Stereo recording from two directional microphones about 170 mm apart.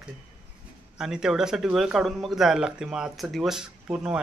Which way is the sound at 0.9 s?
5° right (ahead or behind).